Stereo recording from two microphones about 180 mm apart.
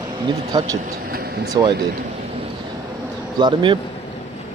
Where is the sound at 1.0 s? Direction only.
60° right (ahead or behind).